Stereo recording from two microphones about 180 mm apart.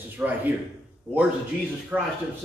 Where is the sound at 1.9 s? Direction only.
10° right (ahead or behind).